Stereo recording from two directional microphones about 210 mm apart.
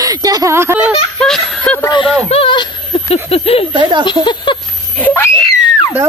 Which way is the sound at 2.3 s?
25° left (ahead or behind).